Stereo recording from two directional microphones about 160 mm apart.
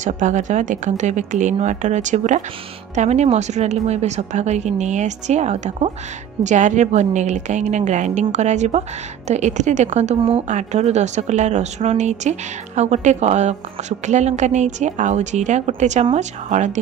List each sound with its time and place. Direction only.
0.0 s speech: 50° right (ahead or behind)